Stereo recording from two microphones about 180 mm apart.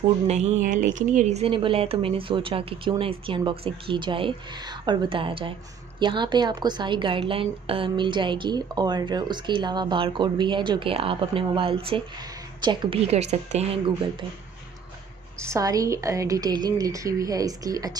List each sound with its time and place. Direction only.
0.3 s a woman's voice: 40° right (ahead or behind)
15.4 s a woman's voice: 20° right (ahead or behind)